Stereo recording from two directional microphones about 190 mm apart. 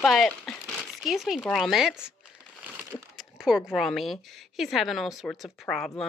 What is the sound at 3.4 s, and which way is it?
Speech, centre (ahead or behind).